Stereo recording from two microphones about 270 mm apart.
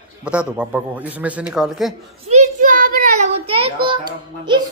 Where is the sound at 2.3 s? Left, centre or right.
Right.